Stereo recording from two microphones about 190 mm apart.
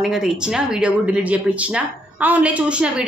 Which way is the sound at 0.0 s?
Centre (ahead or behind).